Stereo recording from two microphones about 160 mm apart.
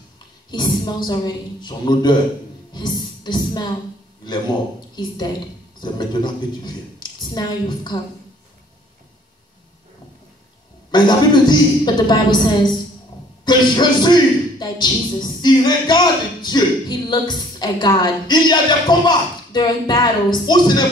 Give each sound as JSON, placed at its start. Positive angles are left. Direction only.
{"t": 0.5, "sound": "a woman's voice", "side_deg": 25}
{"t": 10.9, "sound": "a woman's voice", "side_deg": 30}